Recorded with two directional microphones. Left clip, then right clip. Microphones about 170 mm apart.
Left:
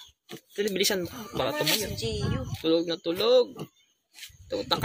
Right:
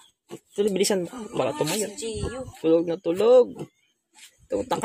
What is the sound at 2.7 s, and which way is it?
Speech, 40° right (ahead or behind).